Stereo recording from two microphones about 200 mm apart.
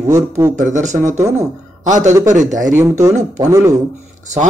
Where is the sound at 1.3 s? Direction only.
35° right (ahead or behind).